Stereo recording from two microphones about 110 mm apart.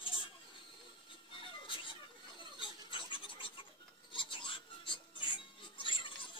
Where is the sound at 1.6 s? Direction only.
50° left (ahead or behind).